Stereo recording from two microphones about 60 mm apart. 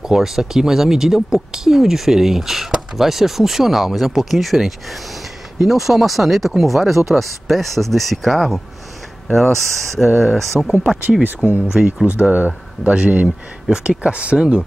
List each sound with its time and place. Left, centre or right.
0.0 s speech: centre
11.2 s speech: right
11.6 s speech: centre
12.1 s speech: right